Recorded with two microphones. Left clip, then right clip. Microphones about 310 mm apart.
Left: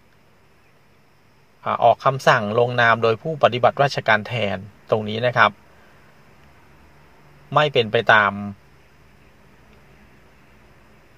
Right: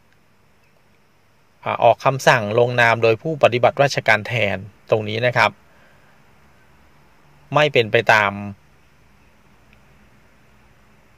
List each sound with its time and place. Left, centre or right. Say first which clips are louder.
1.6 s speech: right 1 dB; right
7.5 s speech: right 2 dB; right